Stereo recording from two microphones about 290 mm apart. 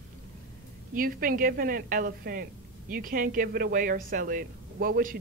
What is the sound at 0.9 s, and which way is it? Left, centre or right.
A woman's voice, right.